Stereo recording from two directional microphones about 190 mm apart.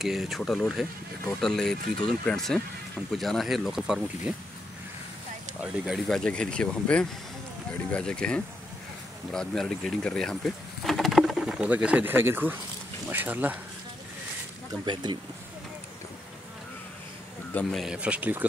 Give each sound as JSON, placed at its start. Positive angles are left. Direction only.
{"t": 0.0, "sound": "speech", "side_deg": 0}
{"t": 5.6, "sound": "speech", "side_deg": 0}
{"t": 14.9, "sound": "speech", "side_deg": -25}
{"t": 17.6, "sound": "speech", "side_deg": 0}